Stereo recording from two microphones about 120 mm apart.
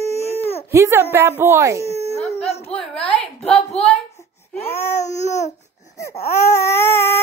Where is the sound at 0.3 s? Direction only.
60° left (ahead or behind).